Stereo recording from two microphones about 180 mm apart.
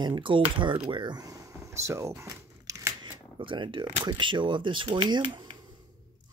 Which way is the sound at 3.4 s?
30° right (ahead or behind).